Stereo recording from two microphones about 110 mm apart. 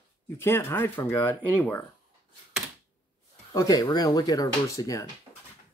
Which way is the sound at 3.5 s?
30° left (ahead or behind).